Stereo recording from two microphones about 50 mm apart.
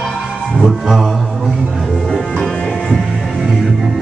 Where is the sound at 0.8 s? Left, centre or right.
Centre.